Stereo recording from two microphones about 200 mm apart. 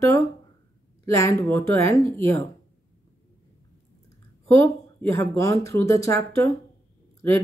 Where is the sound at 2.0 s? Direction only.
25° right (ahead or behind).